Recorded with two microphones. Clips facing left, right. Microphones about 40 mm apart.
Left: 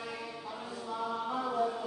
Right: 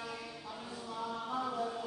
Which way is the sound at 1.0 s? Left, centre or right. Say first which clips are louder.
Left 3 dB; centre.